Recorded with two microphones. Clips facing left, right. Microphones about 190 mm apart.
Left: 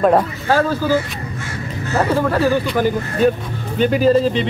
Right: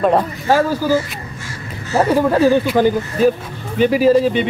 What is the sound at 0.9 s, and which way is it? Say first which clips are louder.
Music: right 1 dB; 60° left (ahead or behind).